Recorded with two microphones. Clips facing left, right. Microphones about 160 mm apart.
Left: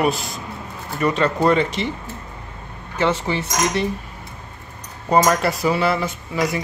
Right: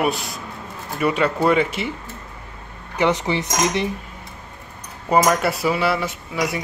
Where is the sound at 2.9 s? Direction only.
15° right (ahead or behind).